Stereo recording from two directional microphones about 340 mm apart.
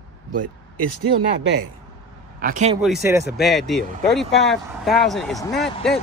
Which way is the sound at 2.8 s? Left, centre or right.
Centre.